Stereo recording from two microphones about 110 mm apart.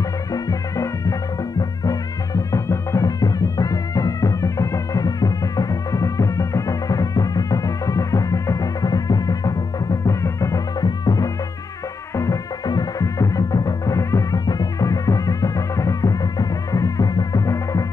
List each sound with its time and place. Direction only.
0.3 s music: 30° left (ahead or behind)